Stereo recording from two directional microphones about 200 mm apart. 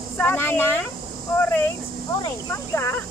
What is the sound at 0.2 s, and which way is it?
Insect, 10° left (ahead or behind).